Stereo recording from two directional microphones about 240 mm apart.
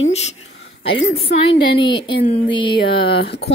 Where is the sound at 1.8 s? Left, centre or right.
Centre.